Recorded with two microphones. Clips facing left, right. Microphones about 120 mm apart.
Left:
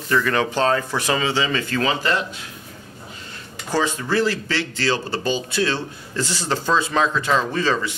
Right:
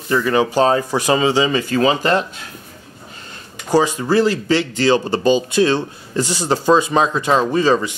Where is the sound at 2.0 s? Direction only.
45° right (ahead or behind).